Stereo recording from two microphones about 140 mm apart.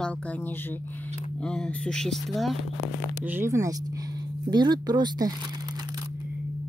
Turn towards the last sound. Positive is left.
turn(degrees=-30)  # may be behind; listen again after turning